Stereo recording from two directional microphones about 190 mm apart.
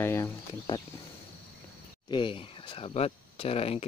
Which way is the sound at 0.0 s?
15° left (ahead or behind).